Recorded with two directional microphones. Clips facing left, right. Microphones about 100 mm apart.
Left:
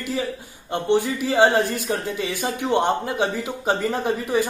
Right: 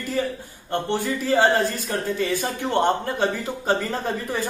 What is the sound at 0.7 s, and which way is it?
Speech, 15° left (ahead or behind).